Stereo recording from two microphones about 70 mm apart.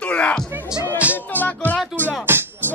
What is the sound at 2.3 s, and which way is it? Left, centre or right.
Speech, right.